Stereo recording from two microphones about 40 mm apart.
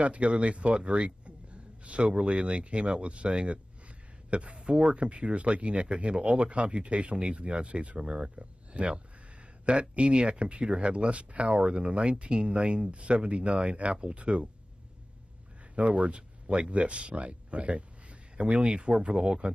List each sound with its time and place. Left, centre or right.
0.0 s a man's voice: right
15.7 s speech: right